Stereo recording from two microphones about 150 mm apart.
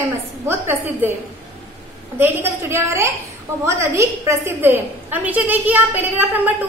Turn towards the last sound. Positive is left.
turn(degrees=-10)  # may be behind; listen again after turning